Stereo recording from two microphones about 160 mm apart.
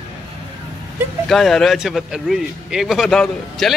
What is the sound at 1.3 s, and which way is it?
A man's voice, centre (ahead or behind).